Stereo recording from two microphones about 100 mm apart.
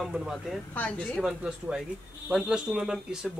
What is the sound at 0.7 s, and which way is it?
Speech, 10° left (ahead or behind).